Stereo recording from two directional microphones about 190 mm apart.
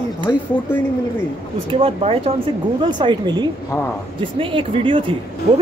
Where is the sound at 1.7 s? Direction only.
30° right (ahead or behind).